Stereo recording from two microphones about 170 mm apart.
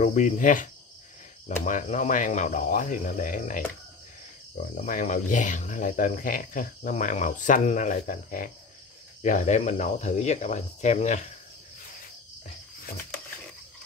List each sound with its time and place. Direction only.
0.0 s speech: 45° left (ahead or behind)
4.7 s speech: 45° left (ahead or behind)